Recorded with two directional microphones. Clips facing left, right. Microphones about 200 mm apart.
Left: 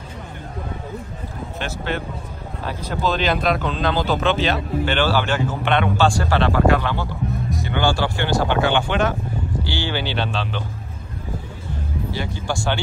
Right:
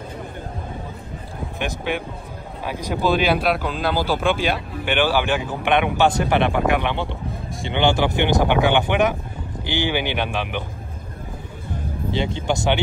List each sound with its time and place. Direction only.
1.6 s speech: 15° right (ahead or behind)
12.1 s speech: 25° right (ahead or behind)